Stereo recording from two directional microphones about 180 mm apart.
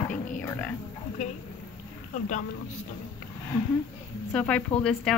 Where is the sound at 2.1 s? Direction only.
40° left (ahead or behind).